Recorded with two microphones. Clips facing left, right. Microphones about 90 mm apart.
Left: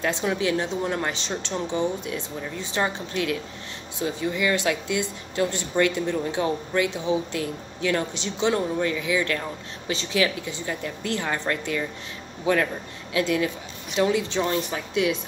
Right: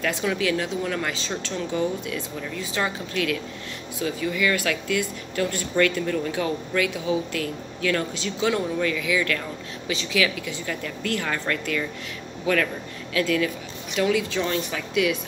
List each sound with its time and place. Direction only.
0.0 s speech: 25° left (ahead or behind)